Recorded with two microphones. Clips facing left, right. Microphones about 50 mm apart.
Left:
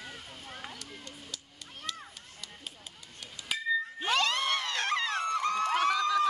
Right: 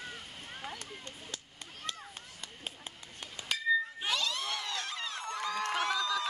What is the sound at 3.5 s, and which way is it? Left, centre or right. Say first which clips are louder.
Cat: left 1 dB; centre.